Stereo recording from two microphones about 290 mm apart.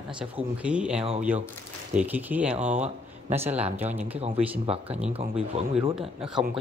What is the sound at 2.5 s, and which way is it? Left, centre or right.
Speech, right.